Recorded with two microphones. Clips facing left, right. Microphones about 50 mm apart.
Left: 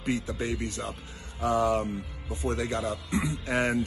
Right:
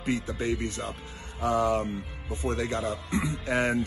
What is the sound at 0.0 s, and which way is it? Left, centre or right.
Speech, right.